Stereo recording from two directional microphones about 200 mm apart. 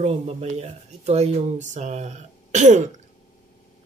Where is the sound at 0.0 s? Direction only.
30° right (ahead or behind).